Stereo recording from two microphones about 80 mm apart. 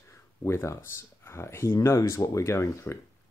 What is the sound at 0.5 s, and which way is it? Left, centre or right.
Speech, left.